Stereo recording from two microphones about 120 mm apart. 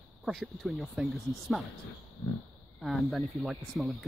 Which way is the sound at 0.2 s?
Centre (ahead or behind).